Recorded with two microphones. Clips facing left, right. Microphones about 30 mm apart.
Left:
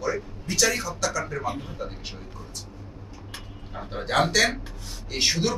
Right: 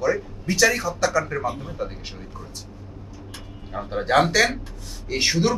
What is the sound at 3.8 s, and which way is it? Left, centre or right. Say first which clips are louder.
Speech: right 5 dB; centre.